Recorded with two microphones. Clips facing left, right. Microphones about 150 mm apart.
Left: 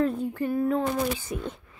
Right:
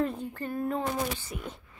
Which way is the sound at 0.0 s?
5° left (ahead or behind).